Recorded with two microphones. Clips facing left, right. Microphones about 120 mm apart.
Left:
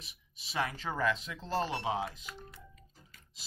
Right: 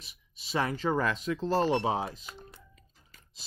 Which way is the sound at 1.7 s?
30° right (ahead or behind).